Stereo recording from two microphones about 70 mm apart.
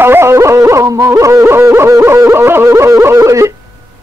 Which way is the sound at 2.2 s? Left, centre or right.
Right.